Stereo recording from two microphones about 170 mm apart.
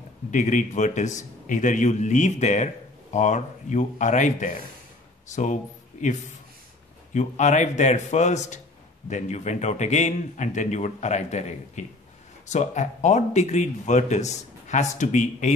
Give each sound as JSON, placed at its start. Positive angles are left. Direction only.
{"t": 0.3, "sound": "a man's voice", "side_deg": 45}
{"t": 7.2, "sound": "a man's voice", "side_deg": 45}